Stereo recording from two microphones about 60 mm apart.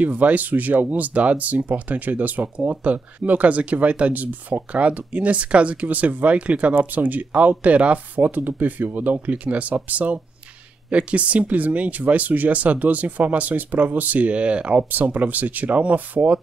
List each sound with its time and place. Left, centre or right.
0.0 s speech: right